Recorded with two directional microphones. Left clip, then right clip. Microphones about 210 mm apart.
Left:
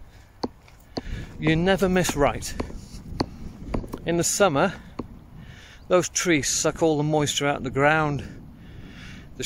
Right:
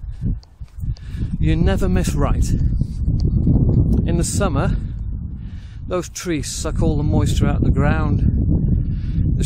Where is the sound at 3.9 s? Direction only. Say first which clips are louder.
Right 1 dB; 15° right (ahead or behind).